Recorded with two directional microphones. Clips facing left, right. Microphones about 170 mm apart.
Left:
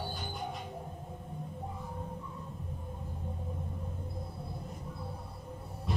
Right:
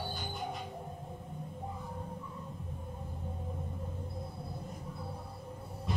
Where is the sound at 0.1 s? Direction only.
Centre (ahead or behind).